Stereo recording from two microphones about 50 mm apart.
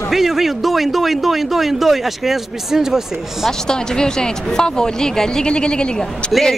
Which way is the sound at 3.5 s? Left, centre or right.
Centre.